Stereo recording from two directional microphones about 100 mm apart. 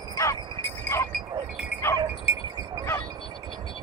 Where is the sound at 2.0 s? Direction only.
25° right (ahead or behind).